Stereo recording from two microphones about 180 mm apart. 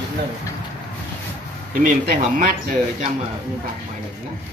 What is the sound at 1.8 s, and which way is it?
Speech, 50° right (ahead or behind).